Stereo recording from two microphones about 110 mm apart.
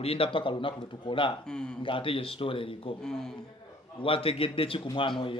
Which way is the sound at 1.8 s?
55° left (ahead or behind).